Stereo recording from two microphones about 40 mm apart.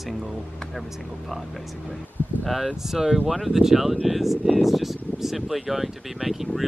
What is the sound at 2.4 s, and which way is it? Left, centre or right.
Speech, centre.